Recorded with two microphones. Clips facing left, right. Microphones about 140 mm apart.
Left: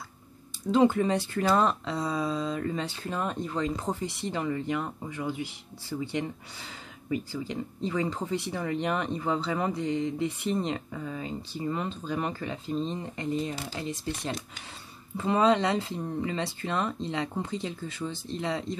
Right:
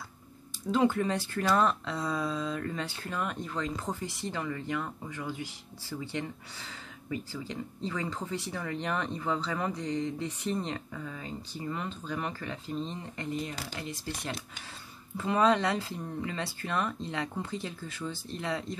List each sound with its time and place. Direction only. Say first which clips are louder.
0.7 s speech: left 4 dB; 20° left (ahead or behind)